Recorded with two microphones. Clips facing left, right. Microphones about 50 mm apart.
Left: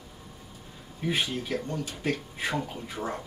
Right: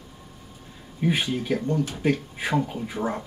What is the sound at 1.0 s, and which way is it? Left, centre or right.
Speech, centre.